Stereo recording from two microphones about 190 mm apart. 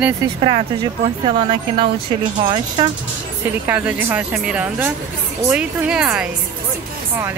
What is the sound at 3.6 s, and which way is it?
A woman's voice, 10° right (ahead or behind).